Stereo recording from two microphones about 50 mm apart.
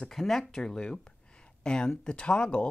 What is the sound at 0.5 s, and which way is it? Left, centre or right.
Speech, centre.